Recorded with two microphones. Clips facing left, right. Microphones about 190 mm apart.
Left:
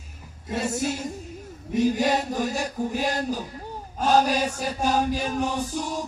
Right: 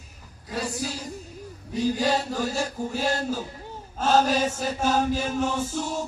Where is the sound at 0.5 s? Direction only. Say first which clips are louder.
Left 4 dB; 25° left (ahead or behind).